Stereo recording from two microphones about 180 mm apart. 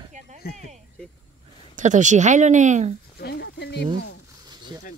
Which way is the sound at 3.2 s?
70° left (ahead or behind).